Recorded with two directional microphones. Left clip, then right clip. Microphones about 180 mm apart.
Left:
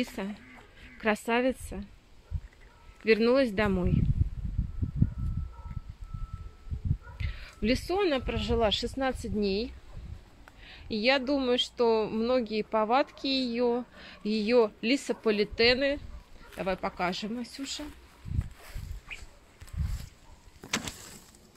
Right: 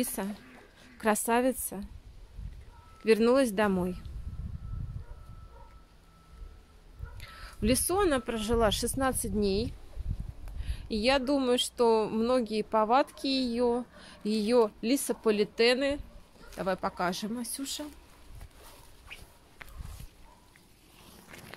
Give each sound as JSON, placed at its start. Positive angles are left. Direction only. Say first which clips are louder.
{"t": 0.0, "sound": "speech", "louder": "even", "side_deg": -15}
{"t": 3.0, "sound": "speech", "louder": "even", "side_deg": -10}
{"t": 7.2, "sound": "speech", "louder": "even", "side_deg": -10}